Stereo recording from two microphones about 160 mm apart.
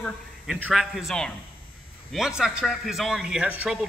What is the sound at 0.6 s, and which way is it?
Speech, 5° right (ahead or behind).